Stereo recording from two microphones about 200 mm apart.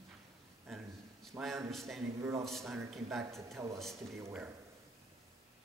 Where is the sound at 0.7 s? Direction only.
Centre (ahead or behind).